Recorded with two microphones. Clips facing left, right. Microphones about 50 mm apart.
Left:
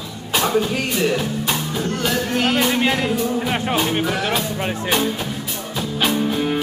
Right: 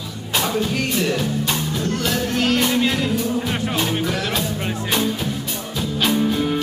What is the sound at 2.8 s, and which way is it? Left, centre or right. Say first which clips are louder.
Music: left 1 dB; left.